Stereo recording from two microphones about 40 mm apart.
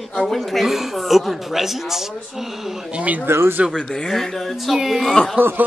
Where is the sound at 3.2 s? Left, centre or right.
Right.